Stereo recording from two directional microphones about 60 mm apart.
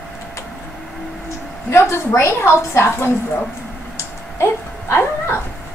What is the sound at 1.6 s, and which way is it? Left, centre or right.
A woman's voice, left.